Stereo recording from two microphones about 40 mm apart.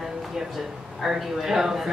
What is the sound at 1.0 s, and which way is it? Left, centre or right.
Speech, centre.